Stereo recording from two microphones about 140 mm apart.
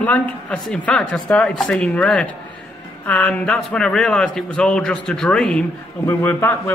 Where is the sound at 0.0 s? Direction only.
10° left (ahead or behind).